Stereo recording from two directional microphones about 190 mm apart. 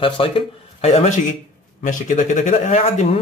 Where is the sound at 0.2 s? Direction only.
30° left (ahead or behind).